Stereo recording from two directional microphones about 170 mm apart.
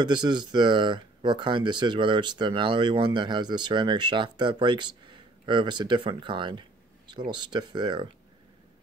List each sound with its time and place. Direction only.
0.0 s speech: 25° right (ahead or behind)